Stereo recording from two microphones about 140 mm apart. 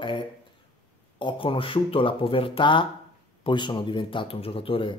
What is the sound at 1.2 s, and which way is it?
Speech, 40° left (ahead or behind).